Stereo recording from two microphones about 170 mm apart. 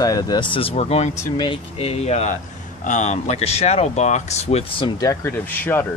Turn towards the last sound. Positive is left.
turn(degrees=10)  # may be behind; listen again after turning